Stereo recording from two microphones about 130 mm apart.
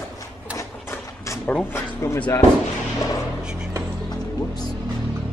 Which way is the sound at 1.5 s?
15° left (ahead or behind).